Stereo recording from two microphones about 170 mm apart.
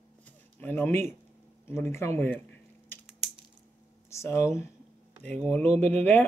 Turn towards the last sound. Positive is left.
turn(degrees=10)  # may be behind; listen again after turning